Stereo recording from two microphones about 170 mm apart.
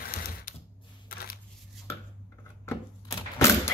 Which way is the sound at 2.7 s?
15° left (ahead or behind).